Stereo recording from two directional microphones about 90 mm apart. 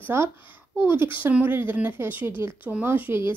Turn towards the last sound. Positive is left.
turn(degrees=-25)  # may be behind; listen again after turning